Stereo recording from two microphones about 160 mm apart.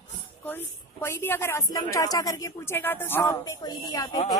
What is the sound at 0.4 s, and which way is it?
A woman's voice, 15° left (ahead or behind).